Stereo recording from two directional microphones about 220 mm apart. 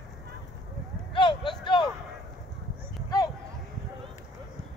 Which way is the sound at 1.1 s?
20° left (ahead or behind).